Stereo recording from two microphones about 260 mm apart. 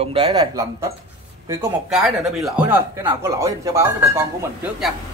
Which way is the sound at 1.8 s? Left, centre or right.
Centre.